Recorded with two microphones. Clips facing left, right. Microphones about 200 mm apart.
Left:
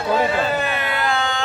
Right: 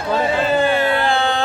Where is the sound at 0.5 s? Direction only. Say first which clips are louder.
Right 7 dB; 30° right (ahead or behind).